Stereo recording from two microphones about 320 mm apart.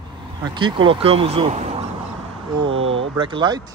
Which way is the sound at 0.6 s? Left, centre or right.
Centre.